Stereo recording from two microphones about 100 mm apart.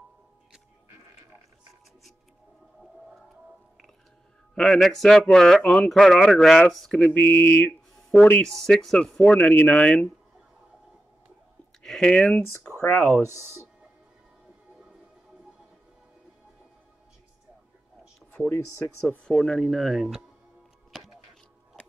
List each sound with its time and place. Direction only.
4.6 s speech: 5° left (ahead or behind)
7.0 s speech: 15° left (ahead or behind)
8.5 s speech: centre (ahead or behind)
11.8 s speech: 5° left (ahead or behind)
13.2 s speech: 35° left (ahead or behind)
19.0 s speech: 10° left (ahead or behind)
20.9 s music: 5° right (ahead or behind)